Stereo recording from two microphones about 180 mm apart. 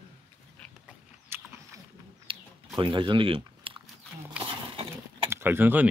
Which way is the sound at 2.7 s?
25° right (ahead or behind).